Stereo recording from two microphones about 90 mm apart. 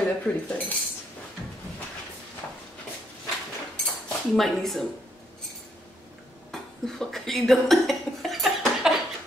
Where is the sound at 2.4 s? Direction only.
20° left (ahead or behind).